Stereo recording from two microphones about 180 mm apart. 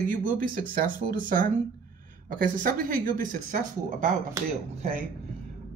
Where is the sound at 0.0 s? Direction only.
50° right (ahead or behind).